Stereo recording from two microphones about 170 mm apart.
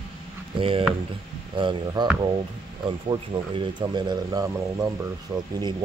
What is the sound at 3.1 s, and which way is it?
Speech, 25° right (ahead or behind).